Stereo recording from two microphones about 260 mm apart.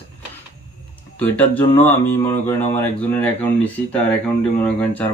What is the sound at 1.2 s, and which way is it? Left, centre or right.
Speech, centre.